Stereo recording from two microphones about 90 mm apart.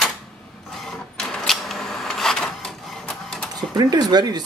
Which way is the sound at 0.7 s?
5° left (ahead or behind).